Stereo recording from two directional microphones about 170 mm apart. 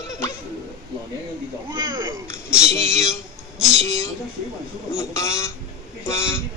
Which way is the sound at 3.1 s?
Centre (ahead or behind).